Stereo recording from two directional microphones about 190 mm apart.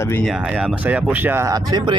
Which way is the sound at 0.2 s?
5° right (ahead or behind).